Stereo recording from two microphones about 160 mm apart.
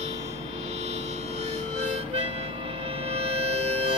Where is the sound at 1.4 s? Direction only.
45° right (ahead or behind).